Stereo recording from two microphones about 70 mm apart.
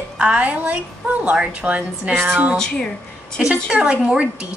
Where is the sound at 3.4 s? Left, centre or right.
Centre.